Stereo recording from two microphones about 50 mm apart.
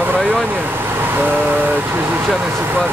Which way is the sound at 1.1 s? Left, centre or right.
Right.